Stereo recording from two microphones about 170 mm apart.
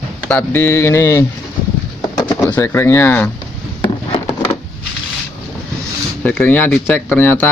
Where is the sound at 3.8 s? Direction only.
35° left (ahead or behind).